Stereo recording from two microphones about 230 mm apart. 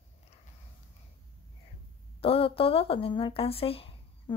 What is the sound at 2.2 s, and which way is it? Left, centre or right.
Speech, left.